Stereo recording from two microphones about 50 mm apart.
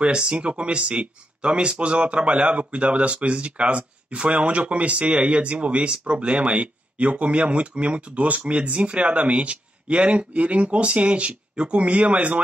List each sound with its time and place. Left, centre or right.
0.0 s speech: centre